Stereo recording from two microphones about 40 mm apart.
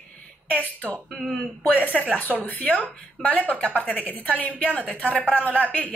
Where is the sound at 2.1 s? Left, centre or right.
Left.